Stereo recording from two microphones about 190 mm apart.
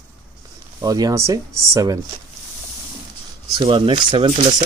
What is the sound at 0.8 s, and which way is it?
Speech, 20° right (ahead or behind).